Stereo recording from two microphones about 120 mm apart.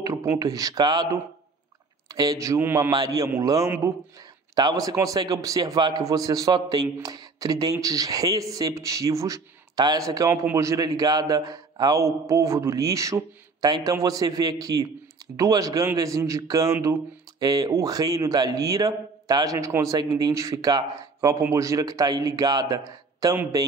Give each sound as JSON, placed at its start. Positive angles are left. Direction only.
{"t": 0.0, "sound": "a man's voice", "side_deg": -25}